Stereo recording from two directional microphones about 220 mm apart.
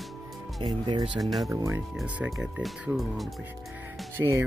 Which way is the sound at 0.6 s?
20° right (ahead or behind).